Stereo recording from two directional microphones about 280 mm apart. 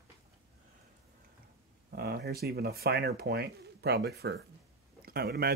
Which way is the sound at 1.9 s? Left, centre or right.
Right.